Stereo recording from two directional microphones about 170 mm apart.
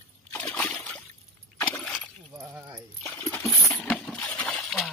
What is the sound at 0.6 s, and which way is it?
Water, 5° left (ahead or behind).